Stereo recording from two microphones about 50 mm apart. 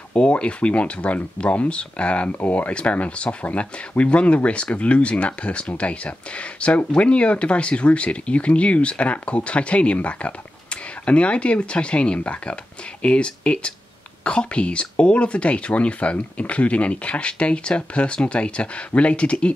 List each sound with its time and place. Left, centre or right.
0.1 s speech: left